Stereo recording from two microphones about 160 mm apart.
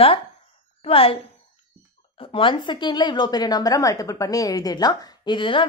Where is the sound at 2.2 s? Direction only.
35° left (ahead or behind).